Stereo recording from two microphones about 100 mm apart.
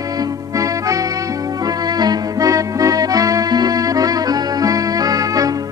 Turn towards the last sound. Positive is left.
turn(degrees=-35)  # may be behind; listen again after turning